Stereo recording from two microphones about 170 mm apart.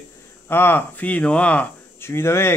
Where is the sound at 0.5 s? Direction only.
10° left (ahead or behind).